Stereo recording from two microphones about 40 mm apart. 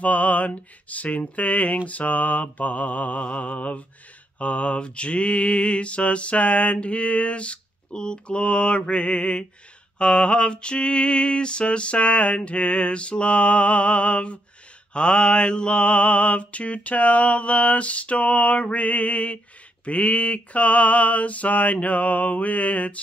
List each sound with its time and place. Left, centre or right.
0.0 s mantra: left